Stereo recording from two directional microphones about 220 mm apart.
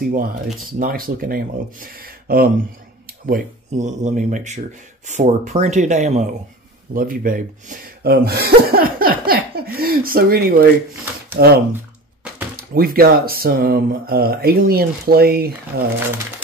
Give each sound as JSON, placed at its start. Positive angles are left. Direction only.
{"t": 0.7, "sound": "speech", "side_deg": -40}
{"t": 12.7, "sound": "speech", "side_deg": -40}